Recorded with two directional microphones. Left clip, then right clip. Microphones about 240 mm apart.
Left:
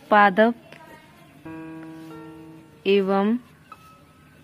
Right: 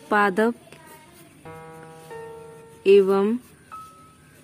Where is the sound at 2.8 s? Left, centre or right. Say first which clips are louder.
Right 4 dB; centre.